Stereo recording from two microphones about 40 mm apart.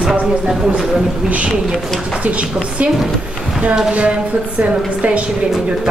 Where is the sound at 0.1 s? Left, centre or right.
Right.